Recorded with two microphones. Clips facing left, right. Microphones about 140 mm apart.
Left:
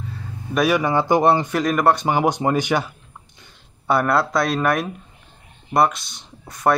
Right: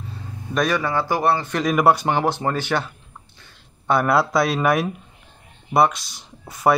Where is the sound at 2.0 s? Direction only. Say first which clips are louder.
Left 2 dB; 10° left (ahead or behind).